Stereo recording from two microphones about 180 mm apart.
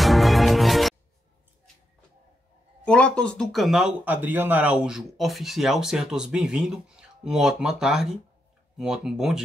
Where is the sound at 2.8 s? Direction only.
5° left (ahead or behind).